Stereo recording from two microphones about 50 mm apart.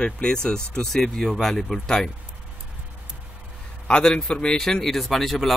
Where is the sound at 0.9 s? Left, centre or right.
Centre.